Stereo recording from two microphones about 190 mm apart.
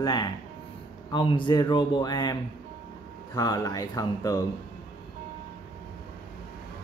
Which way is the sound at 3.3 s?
20° left (ahead or behind).